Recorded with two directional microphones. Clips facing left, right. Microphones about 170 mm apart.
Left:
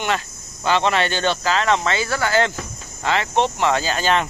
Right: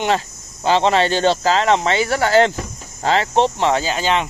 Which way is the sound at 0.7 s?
30° right (ahead or behind).